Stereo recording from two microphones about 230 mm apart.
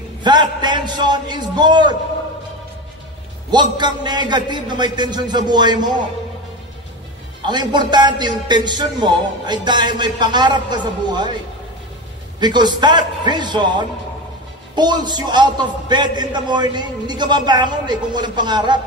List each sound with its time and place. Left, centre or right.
0.2 s a man's voice: centre
3.5 s a man's voice: centre
7.4 s a man's voice: centre
12.4 s a man's voice: centre